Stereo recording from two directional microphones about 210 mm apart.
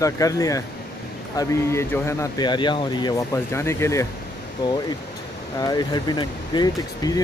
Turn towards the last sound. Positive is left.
turn(degrees=20)  # may be behind; listen again after turning